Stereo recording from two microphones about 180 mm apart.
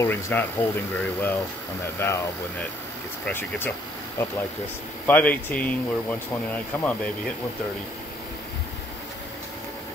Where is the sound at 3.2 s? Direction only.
10° left (ahead or behind).